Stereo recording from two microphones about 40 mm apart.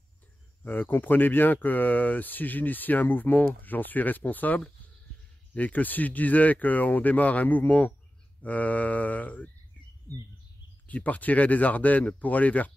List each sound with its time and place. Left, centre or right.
0.7 s speech: left
10.9 s speech: left